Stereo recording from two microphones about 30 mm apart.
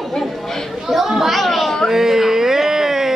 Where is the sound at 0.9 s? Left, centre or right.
Centre.